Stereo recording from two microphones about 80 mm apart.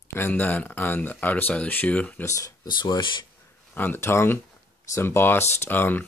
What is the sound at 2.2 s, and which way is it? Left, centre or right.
Speech, left.